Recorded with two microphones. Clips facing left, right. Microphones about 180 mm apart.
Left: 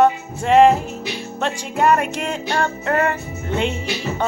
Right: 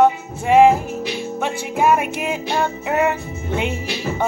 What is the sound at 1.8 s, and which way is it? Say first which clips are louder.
Speech: even; 5° right (ahead or behind).